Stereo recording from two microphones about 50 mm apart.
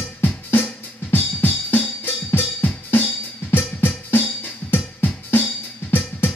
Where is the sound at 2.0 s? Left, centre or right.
Left.